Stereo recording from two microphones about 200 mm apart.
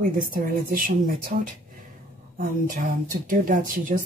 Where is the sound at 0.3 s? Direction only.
45° right (ahead or behind).